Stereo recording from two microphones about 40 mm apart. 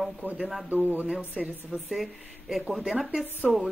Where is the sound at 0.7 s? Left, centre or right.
Right.